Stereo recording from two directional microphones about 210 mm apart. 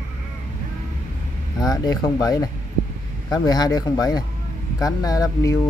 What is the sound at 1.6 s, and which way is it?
Speech, 20° left (ahead or behind).